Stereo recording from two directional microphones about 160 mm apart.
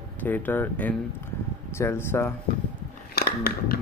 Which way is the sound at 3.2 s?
75° left (ahead or behind).